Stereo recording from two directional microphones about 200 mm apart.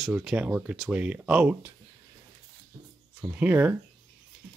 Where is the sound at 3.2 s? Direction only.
5° right (ahead or behind).